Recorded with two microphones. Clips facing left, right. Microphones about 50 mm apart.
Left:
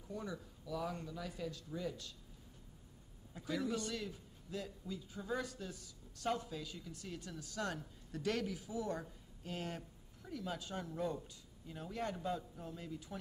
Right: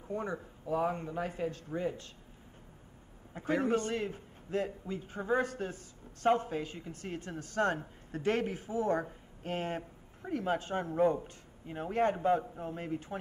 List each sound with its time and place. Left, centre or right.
0.1 s a woman's voice: right
3.3 s a woman's voice: right